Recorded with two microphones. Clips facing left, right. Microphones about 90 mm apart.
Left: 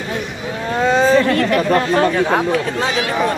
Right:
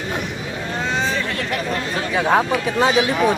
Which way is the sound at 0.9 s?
50° left (ahead or behind).